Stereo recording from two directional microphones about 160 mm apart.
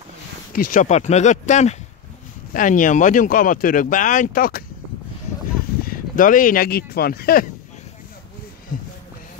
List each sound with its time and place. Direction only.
0.5 s speech: 60° left (ahead or behind)
5.9 s speech: 55° left (ahead or behind)